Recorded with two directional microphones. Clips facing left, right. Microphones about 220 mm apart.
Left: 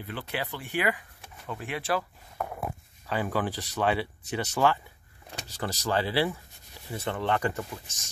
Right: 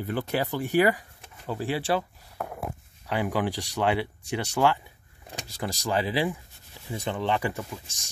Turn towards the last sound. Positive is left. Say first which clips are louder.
# even
turn(degrees=-15)  # may be behind; listen again after turning